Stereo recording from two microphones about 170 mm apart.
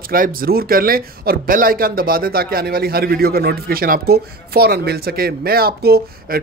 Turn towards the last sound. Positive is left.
turn(degrees=-65)  # may be behind; listen again after turning